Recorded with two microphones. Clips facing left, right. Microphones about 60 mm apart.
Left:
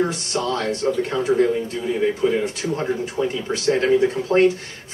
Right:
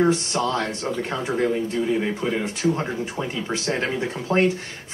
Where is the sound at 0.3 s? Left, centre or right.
Right.